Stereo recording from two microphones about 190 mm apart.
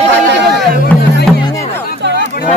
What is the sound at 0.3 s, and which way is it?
Music, 60° right (ahead or behind).